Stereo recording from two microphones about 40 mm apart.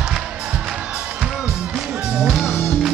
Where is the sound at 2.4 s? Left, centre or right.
Left.